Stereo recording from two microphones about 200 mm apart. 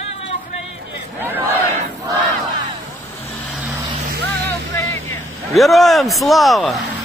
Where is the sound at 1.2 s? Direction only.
10° right (ahead or behind).